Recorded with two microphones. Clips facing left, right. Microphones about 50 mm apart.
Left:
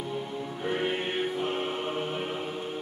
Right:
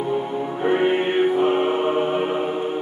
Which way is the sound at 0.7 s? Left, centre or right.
Right.